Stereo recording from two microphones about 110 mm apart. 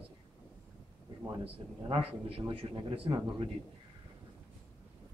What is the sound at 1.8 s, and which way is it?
A man's voice, 55° right (ahead or behind).